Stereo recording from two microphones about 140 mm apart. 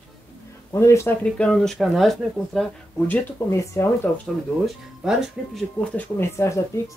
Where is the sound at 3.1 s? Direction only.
20° left (ahead or behind).